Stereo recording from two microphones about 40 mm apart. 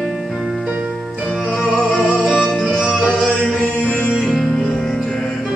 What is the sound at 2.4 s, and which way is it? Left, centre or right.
Music, centre.